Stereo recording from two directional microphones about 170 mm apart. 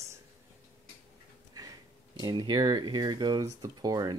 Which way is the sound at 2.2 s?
25° right (ahead or behind).